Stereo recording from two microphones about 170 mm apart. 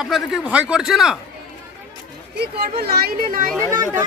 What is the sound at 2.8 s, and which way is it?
Speech, 65° right (ahead or behind).